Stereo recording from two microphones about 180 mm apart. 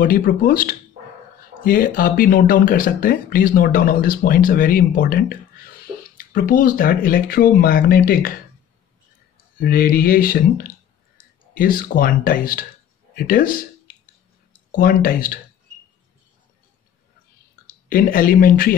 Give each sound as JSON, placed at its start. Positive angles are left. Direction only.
{"t": 0.0, "sound": "speech", "side_deg": 50}
{"t": 9.6, "sound": "speech", "side_deg": 55}
{"t": 11.2, "sound": "clicking", "side_deg": 50}
{"t": 11.5, "sound": "speech", "side_deg": 50}
{"t": 14.8, "sound": "speech", "side_deg": 50}
{"t": 17.8, "sound": "speech", "side_deg": 50}